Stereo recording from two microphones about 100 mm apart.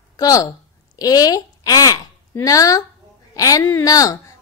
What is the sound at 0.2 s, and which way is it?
A woman's voice, 35° left (ahead or behind).